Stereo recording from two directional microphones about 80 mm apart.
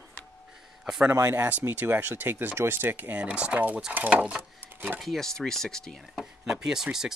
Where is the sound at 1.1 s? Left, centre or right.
Right.